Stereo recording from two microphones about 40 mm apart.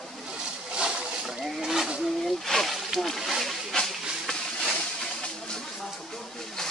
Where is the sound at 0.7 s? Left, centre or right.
Right.